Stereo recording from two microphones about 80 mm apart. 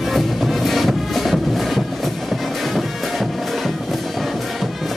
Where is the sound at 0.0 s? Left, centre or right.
Centre.